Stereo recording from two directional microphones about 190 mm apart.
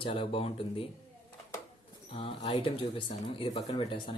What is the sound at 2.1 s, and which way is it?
Speech, 30° left (ahead or behind).